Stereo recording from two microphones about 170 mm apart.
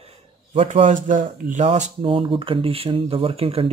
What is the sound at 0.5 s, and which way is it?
A man's voice, 45° right (ahead or behind).